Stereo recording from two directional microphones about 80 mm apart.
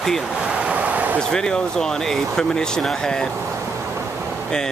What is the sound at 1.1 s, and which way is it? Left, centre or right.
Speech, centre.